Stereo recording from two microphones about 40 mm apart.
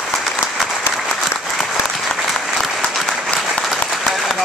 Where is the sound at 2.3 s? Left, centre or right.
Centre.